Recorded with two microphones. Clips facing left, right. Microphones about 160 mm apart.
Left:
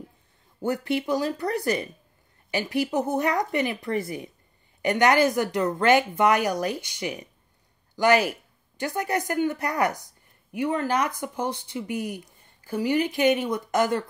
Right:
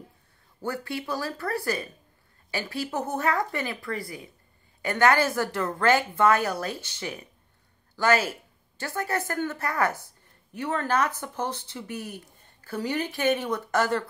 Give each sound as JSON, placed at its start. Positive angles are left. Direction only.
{"t": 0.6, "sound": "a woman's voice", "side_deg": 20}